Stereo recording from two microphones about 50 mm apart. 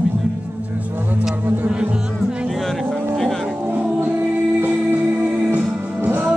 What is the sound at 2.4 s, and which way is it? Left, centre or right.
Music, centre.